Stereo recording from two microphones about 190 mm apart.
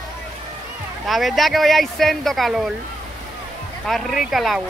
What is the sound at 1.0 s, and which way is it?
Speech, centre (ahead or behind).